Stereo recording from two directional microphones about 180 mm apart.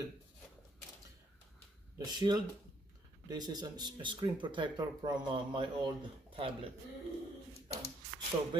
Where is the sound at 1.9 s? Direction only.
25° right (ahead or behind).